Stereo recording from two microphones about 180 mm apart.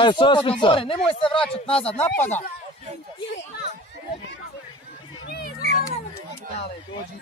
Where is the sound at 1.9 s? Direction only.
10° left (ahead or behind).